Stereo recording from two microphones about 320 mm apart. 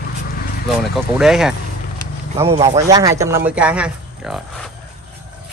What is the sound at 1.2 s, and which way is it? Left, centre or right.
A man's voice, centre.